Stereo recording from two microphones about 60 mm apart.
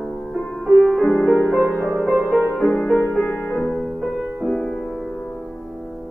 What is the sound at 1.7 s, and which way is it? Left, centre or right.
Music, left.